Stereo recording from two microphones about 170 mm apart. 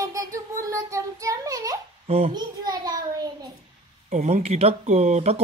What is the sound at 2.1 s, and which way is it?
Speech, 35° right (ahead or behind).